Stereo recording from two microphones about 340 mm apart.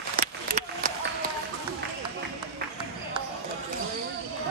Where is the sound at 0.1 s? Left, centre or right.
Right.